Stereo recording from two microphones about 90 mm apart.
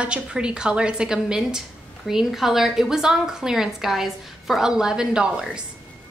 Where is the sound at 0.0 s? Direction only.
10° right (ahead or behind).